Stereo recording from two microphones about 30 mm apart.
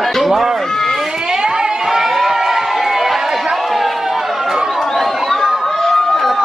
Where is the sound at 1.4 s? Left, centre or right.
Right.